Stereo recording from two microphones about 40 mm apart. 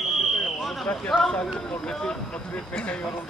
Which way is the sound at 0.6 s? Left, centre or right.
Centre.